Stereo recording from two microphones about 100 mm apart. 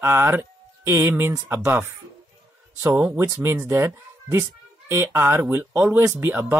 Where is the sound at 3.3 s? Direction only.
20° right (ahead or behind).